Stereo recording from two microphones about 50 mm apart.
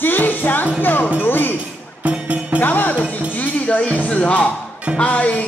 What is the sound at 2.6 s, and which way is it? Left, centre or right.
Music, left.